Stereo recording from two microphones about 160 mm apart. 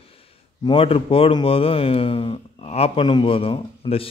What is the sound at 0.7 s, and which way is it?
Speech, 35° left (ahead or behind).